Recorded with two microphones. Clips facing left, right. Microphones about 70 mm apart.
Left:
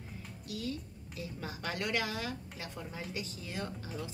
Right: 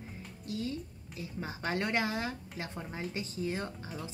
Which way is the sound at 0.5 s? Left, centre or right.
Right.